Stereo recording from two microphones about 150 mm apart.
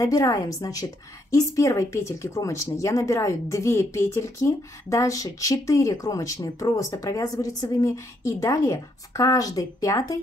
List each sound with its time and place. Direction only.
0.0 s speech: 20° left (ahead or behind)